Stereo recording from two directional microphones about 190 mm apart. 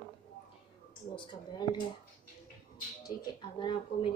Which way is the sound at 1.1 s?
25° left (ahead or behind).